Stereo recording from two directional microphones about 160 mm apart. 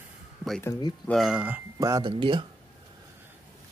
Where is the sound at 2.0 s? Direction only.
30° right (ahead or behind).